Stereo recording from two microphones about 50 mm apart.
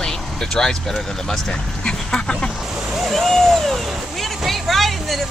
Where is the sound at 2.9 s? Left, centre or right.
Centre.